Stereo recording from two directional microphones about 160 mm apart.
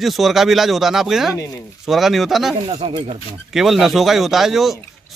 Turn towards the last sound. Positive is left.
turn(degrees=0)  # may be behind; listen again after turning